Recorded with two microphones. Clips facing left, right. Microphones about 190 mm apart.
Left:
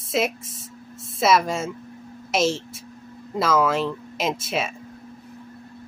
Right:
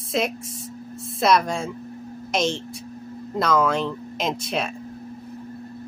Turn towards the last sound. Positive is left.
turn(degrees=5)  # may be behind; listen again after turning